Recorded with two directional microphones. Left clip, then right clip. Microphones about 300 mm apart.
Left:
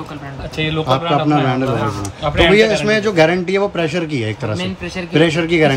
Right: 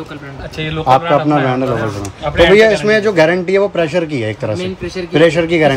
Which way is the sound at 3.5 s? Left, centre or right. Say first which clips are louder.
Right 4 dB; centre.